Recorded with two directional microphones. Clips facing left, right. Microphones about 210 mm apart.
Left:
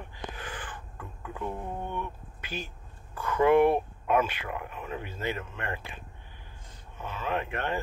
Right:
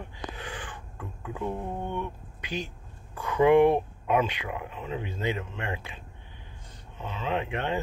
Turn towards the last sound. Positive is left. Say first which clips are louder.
# right 2 dB
turn(degrees=-15)  # may be behind; listen again after turning